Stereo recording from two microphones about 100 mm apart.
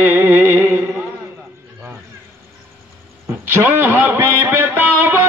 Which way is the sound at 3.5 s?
20° right (ahead or behind).